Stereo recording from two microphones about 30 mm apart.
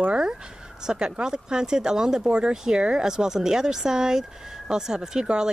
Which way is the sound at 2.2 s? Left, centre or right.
Right.